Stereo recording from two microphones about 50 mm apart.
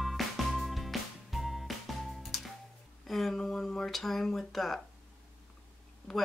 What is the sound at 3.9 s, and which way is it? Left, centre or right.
Speech, centre.